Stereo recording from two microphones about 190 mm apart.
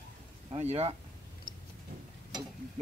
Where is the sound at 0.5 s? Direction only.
35° right (ahead or behind).